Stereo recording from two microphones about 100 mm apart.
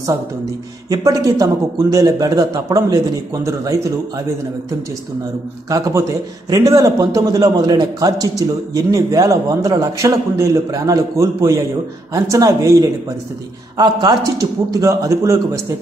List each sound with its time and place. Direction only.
0.8 s a man's voice: 35° right (ahead or behind)
5.7 s a man's voice: 35° right (ahead or behind)